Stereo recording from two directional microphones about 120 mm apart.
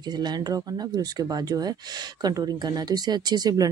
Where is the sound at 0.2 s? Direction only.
35° right (ahead or behind).